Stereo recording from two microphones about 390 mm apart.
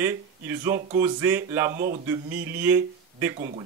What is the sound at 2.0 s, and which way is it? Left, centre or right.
Speech, centre.